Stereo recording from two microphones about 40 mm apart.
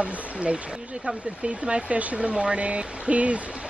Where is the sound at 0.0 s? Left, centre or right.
Right.